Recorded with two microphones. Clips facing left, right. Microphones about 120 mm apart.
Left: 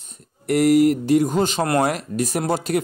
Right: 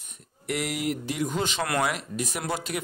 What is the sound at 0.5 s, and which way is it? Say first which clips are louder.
Speech: left 14 dB; 45° left (ahead or behind).